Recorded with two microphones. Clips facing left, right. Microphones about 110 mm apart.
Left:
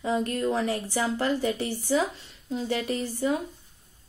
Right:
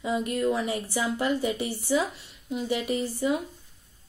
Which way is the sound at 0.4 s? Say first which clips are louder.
Right 1 dB; 30° left (ahead or behind).